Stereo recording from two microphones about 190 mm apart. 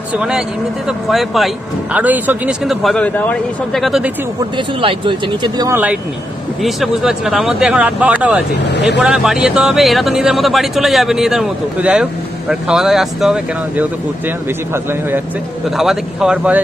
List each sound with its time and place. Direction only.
0.1 s speech: 5° right (ahead or behind)
4.8 s speech: 25° right (ahead or behind)
6.6 s a man's voice: centre (ahead or behind)